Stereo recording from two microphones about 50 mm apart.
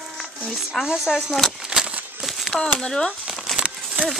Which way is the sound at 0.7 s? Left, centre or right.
Centre.